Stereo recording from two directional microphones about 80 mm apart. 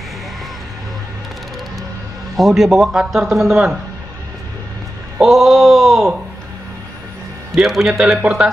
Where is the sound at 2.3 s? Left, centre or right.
Centre.